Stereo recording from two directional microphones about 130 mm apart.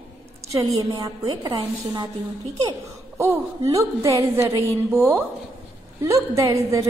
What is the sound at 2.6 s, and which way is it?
Speech, 20° right (ahead or behind).